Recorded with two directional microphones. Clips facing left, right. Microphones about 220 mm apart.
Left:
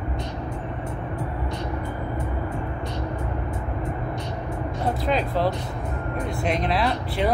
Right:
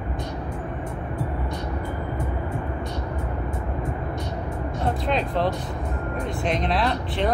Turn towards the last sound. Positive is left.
turn(degrees=5)  # may be behind; listen again after turning